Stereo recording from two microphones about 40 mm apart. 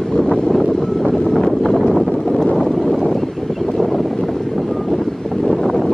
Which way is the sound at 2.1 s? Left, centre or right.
Centre.